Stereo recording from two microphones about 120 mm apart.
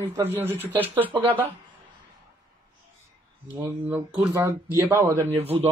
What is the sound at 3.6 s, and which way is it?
Speech, 15° right (ahead or behind).